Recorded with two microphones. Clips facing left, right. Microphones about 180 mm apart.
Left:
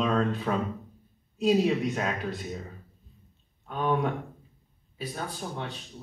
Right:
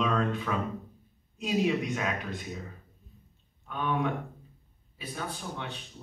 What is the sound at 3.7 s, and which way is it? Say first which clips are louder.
Speech: left 4 dB; 40° left (ahead or behind).